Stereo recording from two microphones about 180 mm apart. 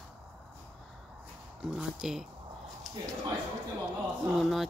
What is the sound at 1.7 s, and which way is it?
Speech, 5° right (ahead or behind).